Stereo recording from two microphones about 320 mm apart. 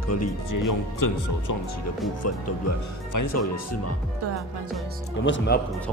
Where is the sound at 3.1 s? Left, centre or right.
Left.